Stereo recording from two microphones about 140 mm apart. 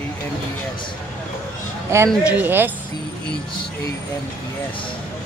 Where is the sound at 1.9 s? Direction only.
20° right (ahead or behind).